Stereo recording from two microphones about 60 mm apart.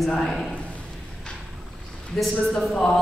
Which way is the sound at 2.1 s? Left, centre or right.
Centre.